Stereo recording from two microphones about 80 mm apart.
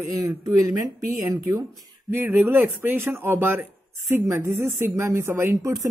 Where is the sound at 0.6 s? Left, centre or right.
Right.